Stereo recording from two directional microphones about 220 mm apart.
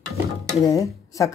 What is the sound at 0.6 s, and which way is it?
Speech, 15° left (ahead or behind).